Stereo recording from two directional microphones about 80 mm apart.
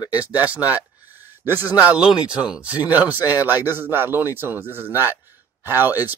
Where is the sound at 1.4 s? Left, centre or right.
Right.